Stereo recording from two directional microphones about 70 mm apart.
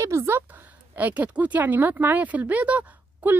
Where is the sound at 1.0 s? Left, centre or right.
Right.